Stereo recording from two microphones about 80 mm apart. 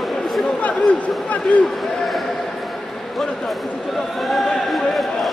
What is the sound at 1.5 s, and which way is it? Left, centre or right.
Speech, centre.